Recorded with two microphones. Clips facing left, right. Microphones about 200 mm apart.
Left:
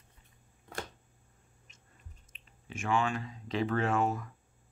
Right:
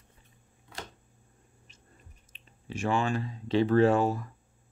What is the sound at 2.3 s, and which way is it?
Speech, 35° right (ahead or behind).